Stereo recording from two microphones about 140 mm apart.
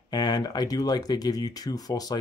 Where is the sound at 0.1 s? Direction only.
30° left (ahead or behind).